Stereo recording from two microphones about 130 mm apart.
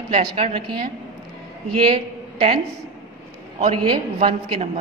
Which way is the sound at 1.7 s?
50° right (ahead or behind).